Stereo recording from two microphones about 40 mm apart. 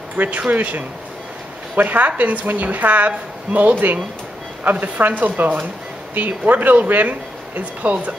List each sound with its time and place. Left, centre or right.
0.1 s a woman's voice: right